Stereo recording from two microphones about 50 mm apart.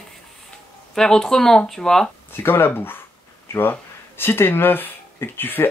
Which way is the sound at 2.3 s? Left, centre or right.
Left.